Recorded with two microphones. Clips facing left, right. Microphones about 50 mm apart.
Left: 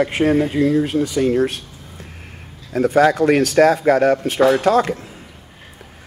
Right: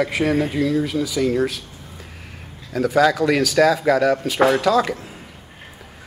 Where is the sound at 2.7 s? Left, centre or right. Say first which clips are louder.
Left 3 dB; left.